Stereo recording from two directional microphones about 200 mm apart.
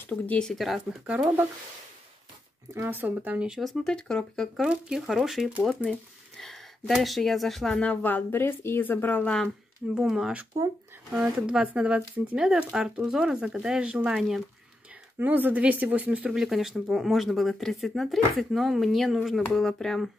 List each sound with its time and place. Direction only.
0.0 s speech: 5° left (ahead or behind)
2.7 s speech: 10° right (ahead or behind)